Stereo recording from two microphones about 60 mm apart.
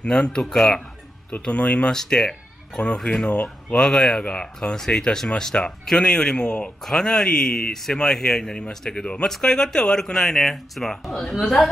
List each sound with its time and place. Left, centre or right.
0.0 s speech: centre
1.4 s speech: centre
2.0 s speech: centre
6.8 s a woman's voice: centre